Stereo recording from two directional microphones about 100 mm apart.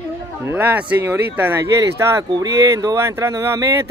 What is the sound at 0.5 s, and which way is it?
Speech, 15° right (ahead or behind).